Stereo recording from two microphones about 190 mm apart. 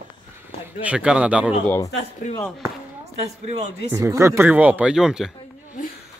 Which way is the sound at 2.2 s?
40° left (ahead or behind).